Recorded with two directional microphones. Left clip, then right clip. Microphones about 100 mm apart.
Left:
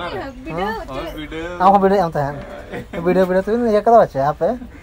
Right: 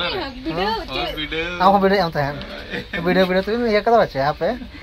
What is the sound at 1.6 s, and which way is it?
Speech, 5° left (ahead or behind).